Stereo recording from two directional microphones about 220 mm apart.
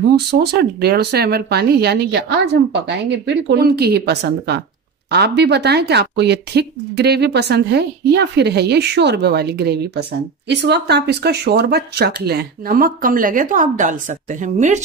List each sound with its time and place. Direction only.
0.1 s speech: 50° right (ahead or behind)